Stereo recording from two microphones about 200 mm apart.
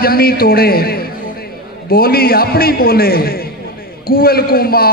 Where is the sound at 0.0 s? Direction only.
50° left (ahead or behind).